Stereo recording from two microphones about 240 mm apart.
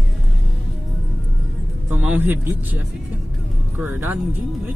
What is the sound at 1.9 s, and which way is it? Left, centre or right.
Speech, centre.